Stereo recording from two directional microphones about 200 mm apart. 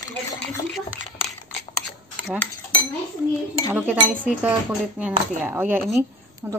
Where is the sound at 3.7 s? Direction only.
10° right (ahead or behind).